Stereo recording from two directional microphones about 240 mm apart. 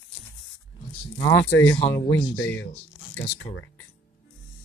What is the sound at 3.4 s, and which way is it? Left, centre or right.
Speech, left.